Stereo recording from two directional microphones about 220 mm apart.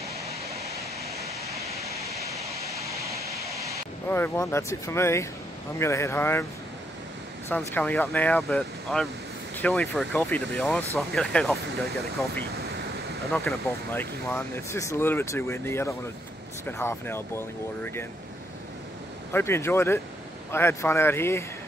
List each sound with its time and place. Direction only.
0.3 s vehicle: 30° right (ahead or behind)
2.4 s vehicle: 30° right (ahead or behind)
4.1 s speech: 10° left (ahead or behind)
7.4 s speech: 10° left (ahead or behind)
12.5 s waves: 45° right (ahead or behind)
13.3 s speech: 5° left (ahead or behind)
19.3 s speech: 10° left (ahead or behind)